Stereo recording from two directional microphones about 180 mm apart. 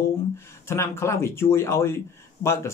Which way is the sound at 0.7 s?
15° left (ahead or behind).